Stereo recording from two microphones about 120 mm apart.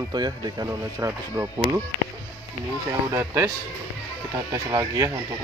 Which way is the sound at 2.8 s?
20° right (ahead or behind).